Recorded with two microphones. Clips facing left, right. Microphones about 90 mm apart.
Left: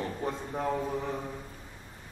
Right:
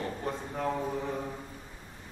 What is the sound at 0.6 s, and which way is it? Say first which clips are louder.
Speech: left 1 dB; 5° left (ahead or behind).